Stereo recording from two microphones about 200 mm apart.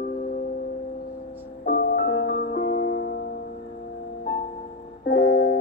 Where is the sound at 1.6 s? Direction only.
45° left (ahead or behind).